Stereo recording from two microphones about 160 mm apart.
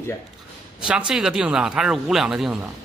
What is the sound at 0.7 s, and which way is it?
Speech, 5° right (ahead or behind).